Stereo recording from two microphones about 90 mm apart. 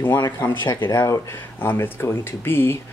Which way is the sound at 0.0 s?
25° left (ahead or behind).